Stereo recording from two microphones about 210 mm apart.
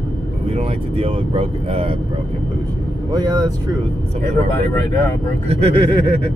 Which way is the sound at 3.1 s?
20° right (ahead or behind).